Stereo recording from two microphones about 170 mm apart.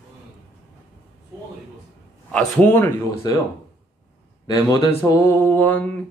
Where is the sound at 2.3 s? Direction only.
5° left (ahead or behind).